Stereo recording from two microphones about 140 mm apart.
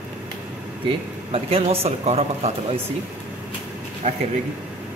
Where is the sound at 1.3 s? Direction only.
45° right (ahead or behind).